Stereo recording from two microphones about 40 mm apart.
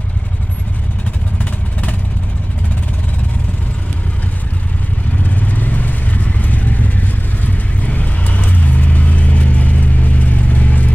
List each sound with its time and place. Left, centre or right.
1.4 s vehicle: left
5.2 s vehicle: left